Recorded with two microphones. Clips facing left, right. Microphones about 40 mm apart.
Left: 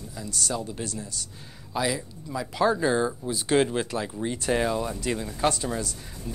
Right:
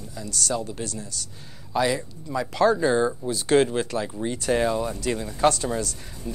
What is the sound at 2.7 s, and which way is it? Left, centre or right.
Speech, centre.